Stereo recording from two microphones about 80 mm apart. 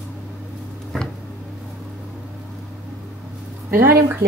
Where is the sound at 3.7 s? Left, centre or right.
Right.